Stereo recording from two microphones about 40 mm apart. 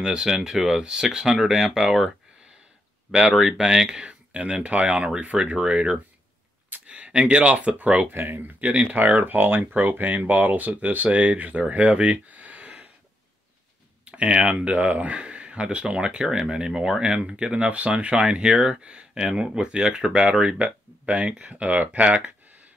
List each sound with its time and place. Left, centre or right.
0.0 s speech: centre
5.2 s speech: right
7.4 s speech: right
8.1 s speech: right
8.5 s speech: right
9.1 s speech: right
11.7 s a sound: right
14.0 s speech: right
20.5 s speech: right